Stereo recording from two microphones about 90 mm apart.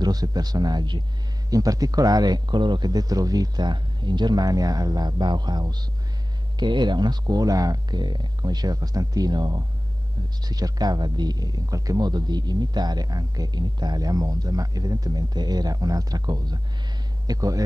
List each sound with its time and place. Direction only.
0.0 s speech: 45° right (ahead or behind)
1.5 s speech: 40° right (ahead or behind)